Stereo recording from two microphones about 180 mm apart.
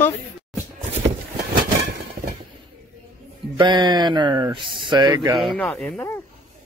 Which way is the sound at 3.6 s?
25° right (ahead or behind).